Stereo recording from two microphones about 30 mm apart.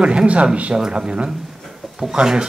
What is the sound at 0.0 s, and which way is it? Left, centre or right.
Speech, right.